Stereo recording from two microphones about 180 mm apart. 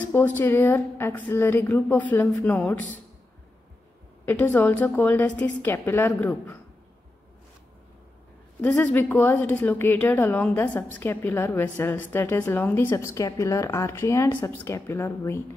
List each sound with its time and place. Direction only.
0.1 s a woman's voice: 10° left (ahead or behind)
4.3 s a woman's voice: 10° left (ahead or behind)
8.5 s a woman's voice: 10° left (ahead or behind)